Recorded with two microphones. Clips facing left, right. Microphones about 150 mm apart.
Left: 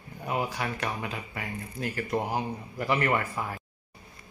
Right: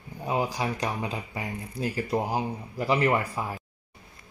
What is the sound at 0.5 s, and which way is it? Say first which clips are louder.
Speech: right 3 dB; 15° right (ahead or behind).